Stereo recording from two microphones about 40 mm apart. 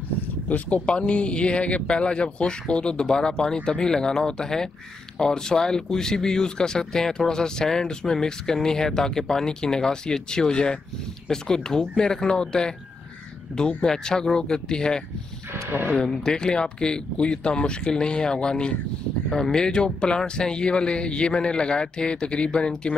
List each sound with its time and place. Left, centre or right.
0.7 s a man's voice: left
13.8 s a man's voice: centre
15.5 s speech: right
16.0 s a man's voice: centre